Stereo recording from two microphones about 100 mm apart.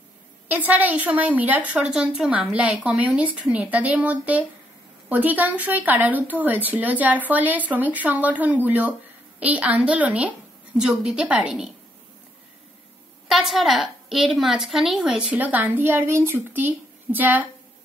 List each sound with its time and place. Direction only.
0.5 s a woman's voice: 15° right (ahead or behind)
13.3 s a woman's voice: centre (ahead or behind)
15.3 s speech: 20° right (ahead or behind)